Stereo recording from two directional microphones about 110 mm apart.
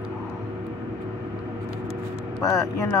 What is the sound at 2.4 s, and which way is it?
Speech, 30° left (ahead or behind).